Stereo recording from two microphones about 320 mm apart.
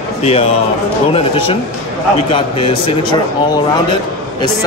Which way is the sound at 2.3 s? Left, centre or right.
Centre.